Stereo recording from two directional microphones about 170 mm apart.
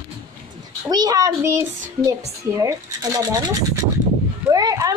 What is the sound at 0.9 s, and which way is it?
A child's voice, 25° right (ahead or behind).